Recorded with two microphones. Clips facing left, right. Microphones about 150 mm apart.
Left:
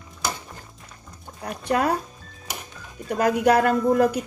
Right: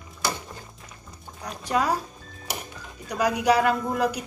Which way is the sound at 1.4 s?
60° left (ahead or behind).